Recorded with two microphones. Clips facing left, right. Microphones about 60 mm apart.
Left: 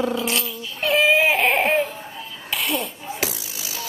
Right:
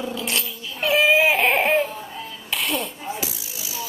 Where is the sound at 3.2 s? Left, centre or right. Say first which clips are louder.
Left 4 dB; left.